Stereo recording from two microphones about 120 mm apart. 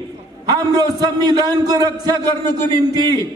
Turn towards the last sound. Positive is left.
turn(degrees=-30)  # may be behind; listen again after turning